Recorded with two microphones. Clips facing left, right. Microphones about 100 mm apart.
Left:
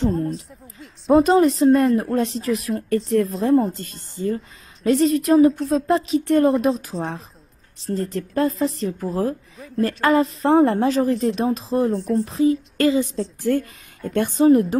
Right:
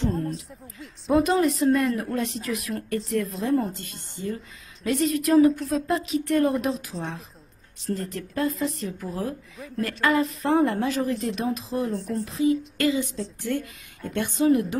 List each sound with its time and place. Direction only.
0.1 s speech: centre (ahead or behind)
1.0 s speech: 30° left (ahead or behind)
11.9 s speech: centre (ahead or behind)
12.3 s speech: 35° left (ahead or behind)